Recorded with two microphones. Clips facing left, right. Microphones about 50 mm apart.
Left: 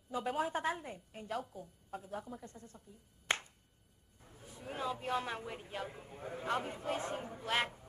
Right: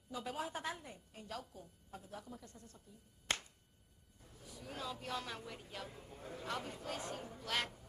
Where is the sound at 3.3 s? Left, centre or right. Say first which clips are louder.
Left 4 dB; left.